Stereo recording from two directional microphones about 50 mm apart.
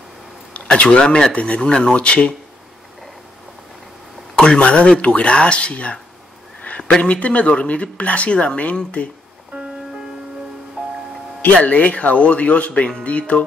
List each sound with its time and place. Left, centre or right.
0.8 s speech: centre
4.4 s speech: left
6.7 s a sound: left
7.0 s speech: left
10.8 s music: centre
11.5 s speech: left